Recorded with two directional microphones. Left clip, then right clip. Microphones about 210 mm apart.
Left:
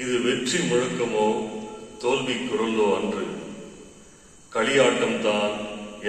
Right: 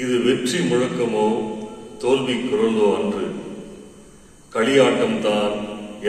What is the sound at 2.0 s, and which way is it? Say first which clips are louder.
Speech: right 5 dB; 55° right (ahead or behind).